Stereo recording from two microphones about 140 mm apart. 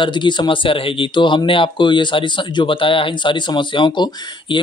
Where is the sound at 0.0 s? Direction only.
35° left (ahead or behind).